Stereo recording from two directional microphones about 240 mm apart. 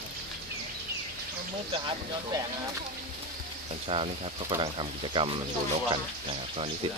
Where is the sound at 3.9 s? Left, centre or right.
Right.